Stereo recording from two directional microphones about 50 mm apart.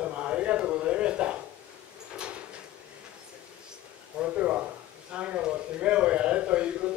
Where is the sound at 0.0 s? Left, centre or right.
Right.